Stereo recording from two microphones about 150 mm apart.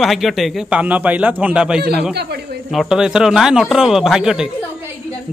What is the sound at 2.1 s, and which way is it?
Speech, 90° right.